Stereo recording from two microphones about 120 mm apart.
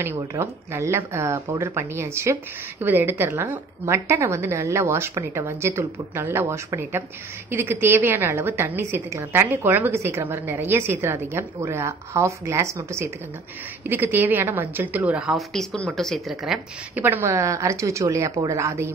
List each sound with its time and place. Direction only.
0.0 s a woman's voice: 25° right (ahead or behind)
15.3 s speech: 5° left (ahead or behind)
16.9 s a woman's voice: 15° right (ahead or behind)